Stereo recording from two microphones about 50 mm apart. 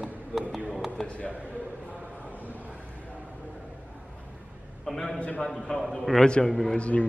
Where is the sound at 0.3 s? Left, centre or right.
Centre.